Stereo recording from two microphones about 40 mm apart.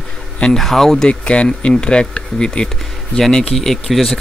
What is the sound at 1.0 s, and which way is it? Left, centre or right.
Speech, left.